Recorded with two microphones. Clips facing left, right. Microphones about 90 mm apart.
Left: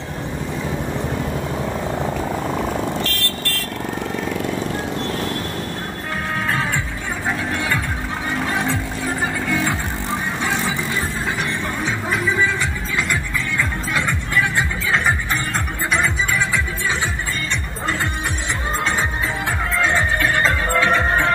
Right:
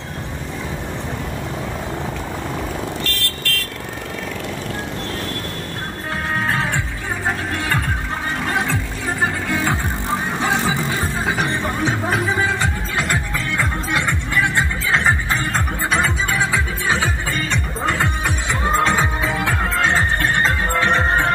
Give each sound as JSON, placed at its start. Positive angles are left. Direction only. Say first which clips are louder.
{"t": 9.2, "sound": "music", "louder": "right 2 dB", "side_deg": -55}
{"t": 10.4, "sound": "vehicle", "louder": "right 3 dB", "side_deg": -55}
{"t": 11.4, "sound": "music", "louder": "right 3 dB", "side_deg": -50}
{"t": 18.8, "sound": "music", "louder": "right 3 dB", "side_deg": -85}
{"t": 20.4, "sound": "music", "louder": "left 1 dB", "side_deg": -30}